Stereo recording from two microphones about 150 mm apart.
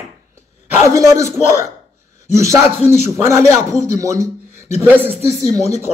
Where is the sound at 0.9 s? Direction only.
20° right (ahead or behind).